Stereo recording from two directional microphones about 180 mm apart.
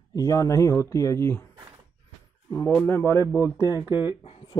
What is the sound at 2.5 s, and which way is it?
Speech, 10° left (ahead or behind).